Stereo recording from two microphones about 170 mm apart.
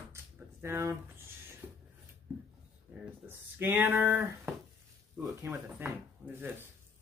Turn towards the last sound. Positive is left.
turn(degrees=-15)  # may be behind; listen again after turning